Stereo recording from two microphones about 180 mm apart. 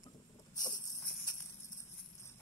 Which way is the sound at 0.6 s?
20° left (ahead or behind).